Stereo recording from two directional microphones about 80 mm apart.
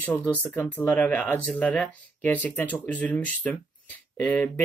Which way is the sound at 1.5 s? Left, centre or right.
Centre.